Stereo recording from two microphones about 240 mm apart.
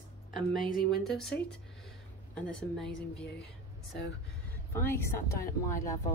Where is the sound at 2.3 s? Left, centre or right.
Centre.